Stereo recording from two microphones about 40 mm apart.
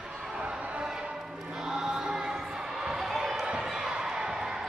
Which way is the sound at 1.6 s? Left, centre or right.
Centre.